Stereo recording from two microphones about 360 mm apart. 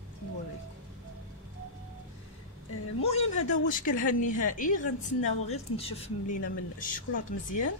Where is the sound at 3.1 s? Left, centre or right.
Centre.